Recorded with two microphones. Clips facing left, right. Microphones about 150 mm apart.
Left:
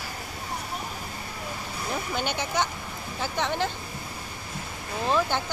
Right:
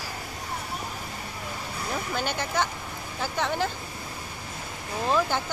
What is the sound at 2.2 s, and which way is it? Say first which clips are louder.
Speech: even; centre (ahead or behind).